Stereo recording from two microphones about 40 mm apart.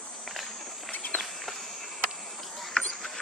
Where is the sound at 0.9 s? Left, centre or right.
Left.